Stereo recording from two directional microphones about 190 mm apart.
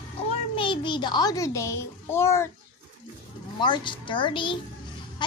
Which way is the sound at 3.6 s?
25° left (ahead or behind).